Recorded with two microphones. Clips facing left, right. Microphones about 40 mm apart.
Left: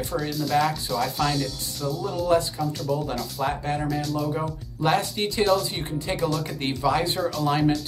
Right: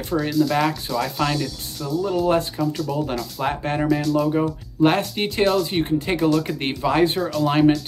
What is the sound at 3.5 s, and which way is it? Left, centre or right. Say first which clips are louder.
Speech: right 6 dB; right.